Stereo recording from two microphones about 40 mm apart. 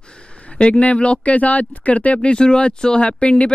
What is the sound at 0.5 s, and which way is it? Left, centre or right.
Speech, left.